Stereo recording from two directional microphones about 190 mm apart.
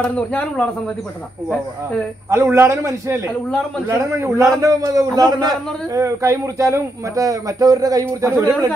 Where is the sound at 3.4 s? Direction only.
5° left (ahead or behind).